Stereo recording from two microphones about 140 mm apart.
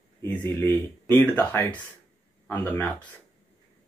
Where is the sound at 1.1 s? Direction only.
15° left (ahead or behind).